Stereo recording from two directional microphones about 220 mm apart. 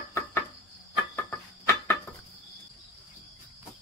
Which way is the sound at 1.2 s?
10° left (ahead or behind).